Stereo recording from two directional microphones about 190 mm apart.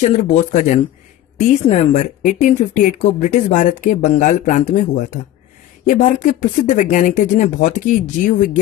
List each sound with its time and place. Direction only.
0.0 s speech: 35° left (ahead or behind)